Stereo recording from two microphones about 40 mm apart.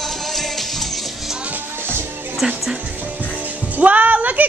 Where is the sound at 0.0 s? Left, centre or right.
Centre.